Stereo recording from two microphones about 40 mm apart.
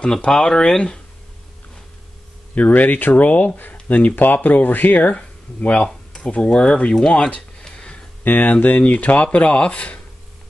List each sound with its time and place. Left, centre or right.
0.3 s speech: centre
2.5 s speech: left
5.6 s speech: left
7.6 s a sound: left
8.2 s speech: left
8.8 s speech: left